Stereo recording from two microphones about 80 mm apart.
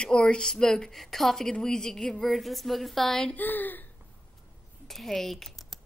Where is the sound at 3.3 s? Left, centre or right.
Left.